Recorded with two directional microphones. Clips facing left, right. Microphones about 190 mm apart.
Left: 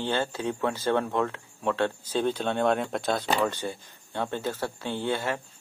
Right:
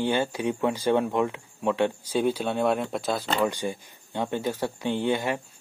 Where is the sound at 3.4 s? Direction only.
15° right (ahead or behind).